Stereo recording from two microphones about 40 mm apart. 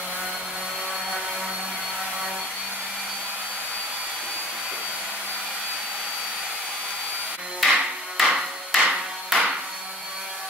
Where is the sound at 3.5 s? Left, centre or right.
Left.